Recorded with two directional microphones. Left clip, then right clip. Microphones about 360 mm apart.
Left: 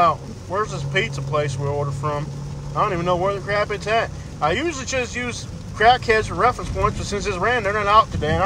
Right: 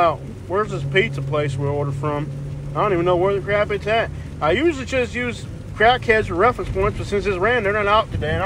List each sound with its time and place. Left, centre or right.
0.0 s speech: centre